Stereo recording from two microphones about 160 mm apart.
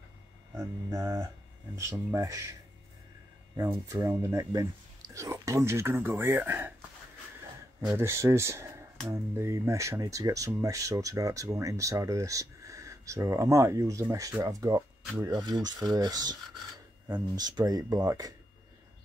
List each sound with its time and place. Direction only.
0.6 s speech: 20° right (ahead or behind)
3.9 s speech: 20° right (ahead or behind)
7.9 s speech: 15° right (ahead or behind)
17.4 s speech: 25° right (ahead or behind)